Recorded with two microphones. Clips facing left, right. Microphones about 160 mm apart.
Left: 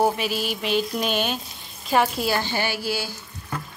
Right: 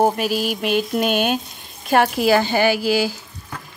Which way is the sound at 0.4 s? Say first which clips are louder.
Right 4 dB; 50° right (ahead or behind).